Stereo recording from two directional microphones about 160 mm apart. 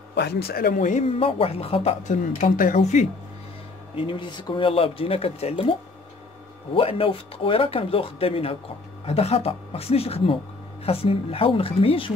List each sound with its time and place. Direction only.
0.1 s speech: 90° left
0.7 s speech: 50° left (ahead or behind)
1.2 s speech: 35° left (ahead or behind)
2.4 s speech: 60° left (ahead or behind)
3.9 s speech: 35° left (ahead or behind)